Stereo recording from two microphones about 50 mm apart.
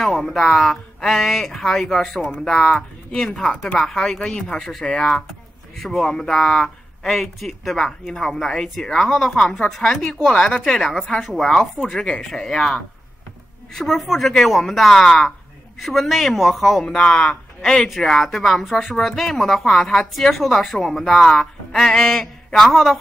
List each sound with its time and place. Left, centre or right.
0.0 s a woman's voice: centre
2.6 s speech: left
3.2 s a woman's voice: centre
13.7 s a woman's voice: centre
16.8 s a woman's voice: centre